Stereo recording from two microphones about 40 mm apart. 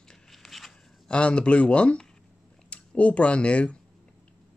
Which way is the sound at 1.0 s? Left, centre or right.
Left.